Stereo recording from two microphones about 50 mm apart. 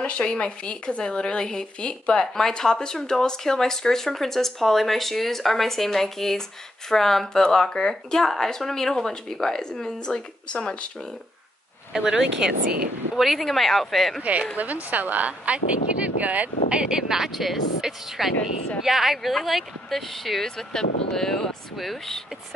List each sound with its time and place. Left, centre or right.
0.0 s speech: left
11.9 s speech: centre
13.1 s speech: centre
14.2 s a woman's voice: right
16.9 s speech: centre